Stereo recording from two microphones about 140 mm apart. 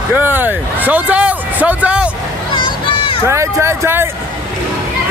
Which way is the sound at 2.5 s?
35° left (ahead or behind).